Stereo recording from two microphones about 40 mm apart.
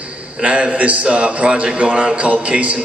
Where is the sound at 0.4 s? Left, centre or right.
Right.